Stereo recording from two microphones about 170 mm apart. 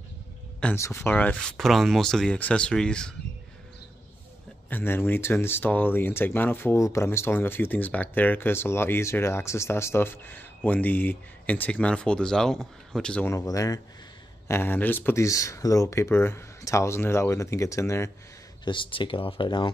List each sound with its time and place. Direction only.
0.6 s speech: 5° left (ahead or behind)
4.6 s speech: 10° left (ahead or behind)
18.7 s speech: 30° left (ahead or behind)